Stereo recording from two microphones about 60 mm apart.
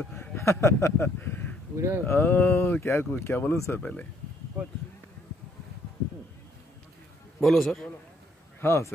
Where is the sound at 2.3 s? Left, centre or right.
Left.